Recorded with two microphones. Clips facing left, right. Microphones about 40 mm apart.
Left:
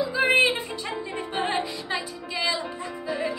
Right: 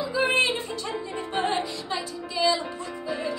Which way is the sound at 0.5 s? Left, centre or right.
Centre.